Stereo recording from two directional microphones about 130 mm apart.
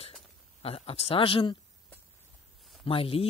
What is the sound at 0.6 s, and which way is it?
Speech, 50° left (ahead or behind).